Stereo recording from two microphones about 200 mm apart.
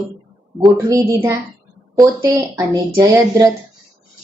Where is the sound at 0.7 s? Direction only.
20° right (ahead or behind).